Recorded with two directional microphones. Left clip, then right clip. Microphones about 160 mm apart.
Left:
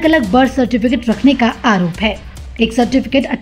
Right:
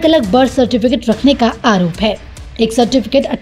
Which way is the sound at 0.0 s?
25° right (ahead or behind).